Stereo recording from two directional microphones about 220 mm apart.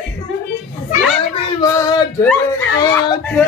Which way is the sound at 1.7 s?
10° left (ahead or behind).